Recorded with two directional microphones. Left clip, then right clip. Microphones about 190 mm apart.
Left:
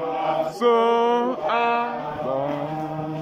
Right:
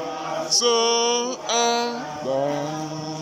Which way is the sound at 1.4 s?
30° right (ahead or behind).